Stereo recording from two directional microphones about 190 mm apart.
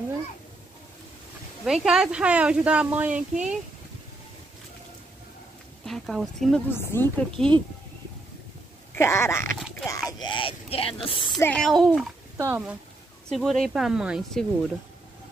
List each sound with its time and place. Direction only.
1.6 s speech: centre (ahead or behind)
5.9 s speech: centre (ahead or behind)
6.7 s speech: 10° left (ahead or behind)
8.9 s speech: 15° left (ahead or behind)
9.6 s a sound: centre (ahead or behind)
10.0 s a woman's voice: 20° left (ahead or behind)
11.3 s speech: 5° left (ahead or behind)
12.4 s speech: 10° right (ahead or behind)
13.3 s speech: centre (ahead or behind)